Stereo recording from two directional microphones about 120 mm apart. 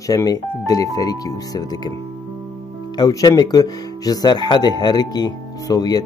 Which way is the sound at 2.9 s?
35° left (ahead or behind).